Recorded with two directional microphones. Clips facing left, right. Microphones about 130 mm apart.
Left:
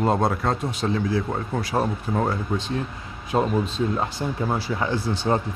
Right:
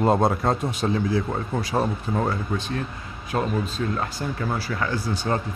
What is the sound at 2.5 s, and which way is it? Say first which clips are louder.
Speech: left 1 dB; 20° left (ahead or behind).